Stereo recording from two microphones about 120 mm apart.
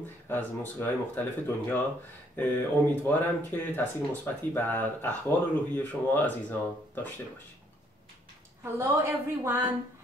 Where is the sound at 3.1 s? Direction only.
15° left (ahead or behind).